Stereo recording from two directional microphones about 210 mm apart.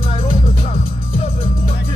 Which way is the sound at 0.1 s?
25° left (ahead or behind).